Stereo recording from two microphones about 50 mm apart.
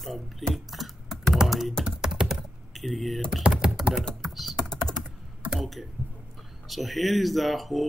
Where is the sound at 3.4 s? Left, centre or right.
Centre.